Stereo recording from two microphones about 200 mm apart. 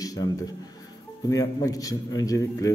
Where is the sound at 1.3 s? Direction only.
15° left (ahead or behind).